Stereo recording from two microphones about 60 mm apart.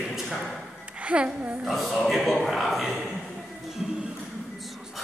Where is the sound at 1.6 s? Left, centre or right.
Centre.